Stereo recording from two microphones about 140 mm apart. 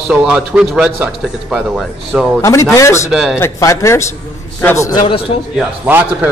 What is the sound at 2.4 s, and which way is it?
Speech, 20° left (ahead or behind).